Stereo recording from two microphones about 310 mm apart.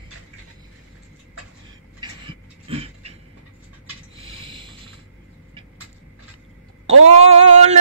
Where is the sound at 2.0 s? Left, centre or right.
Centre.